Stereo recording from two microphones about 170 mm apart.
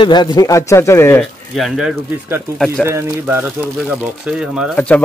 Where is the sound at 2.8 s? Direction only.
15° right (ahead or behind).